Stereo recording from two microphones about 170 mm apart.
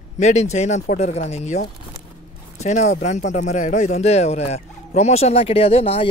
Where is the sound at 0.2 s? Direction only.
40° left (ahead or behind).